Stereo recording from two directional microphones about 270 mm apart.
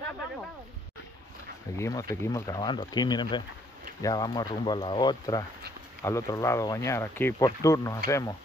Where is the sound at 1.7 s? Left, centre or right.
Centre.